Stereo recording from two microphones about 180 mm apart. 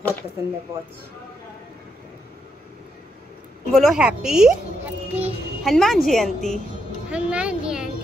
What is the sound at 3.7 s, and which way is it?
A woman's voice, centre (ahead or behind).